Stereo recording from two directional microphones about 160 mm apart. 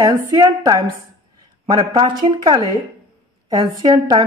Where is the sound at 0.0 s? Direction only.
20° right (ahead or behind).